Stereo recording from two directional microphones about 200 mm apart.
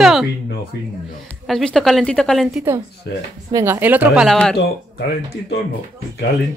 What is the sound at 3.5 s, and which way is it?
Speech, 15° right (ahead or behind).